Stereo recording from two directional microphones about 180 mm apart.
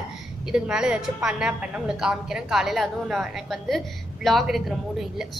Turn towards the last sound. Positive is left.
turn(degrees=0)  # may be behind; listen again after turning